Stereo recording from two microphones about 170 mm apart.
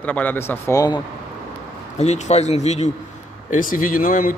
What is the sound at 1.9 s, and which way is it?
Speech, 40° left (ahead or behind).